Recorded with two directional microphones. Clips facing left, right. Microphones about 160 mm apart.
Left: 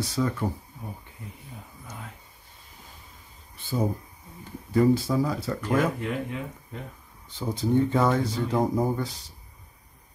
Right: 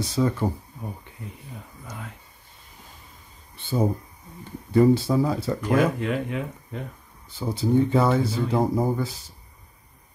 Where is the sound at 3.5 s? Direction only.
25° right (ahead or behind).